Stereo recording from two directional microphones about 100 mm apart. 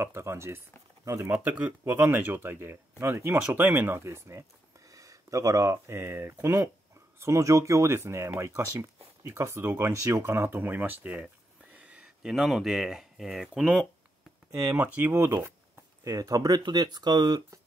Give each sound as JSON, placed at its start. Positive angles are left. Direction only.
{"t": 0.0, "sound": "speech", "side_deg": -25}
{"t": 1.3, "sound": "speech", "side_deg": -15}
{"t": 14.5, "sound": "speech", "side_deg": -25}
{"t": 16.0, "sound": "speech", "side_deg": -35}